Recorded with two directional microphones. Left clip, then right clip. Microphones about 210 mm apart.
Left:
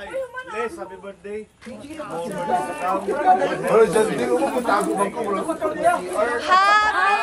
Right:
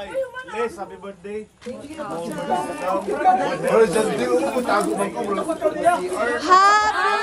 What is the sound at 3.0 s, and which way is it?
Speech, centre (ahead or behind).